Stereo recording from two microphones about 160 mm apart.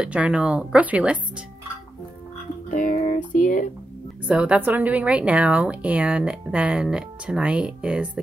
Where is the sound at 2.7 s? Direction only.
55° left (ahead or behind).